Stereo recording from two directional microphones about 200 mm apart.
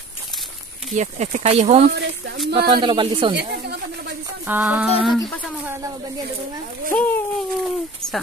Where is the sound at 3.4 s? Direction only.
55° right (ahead or behind).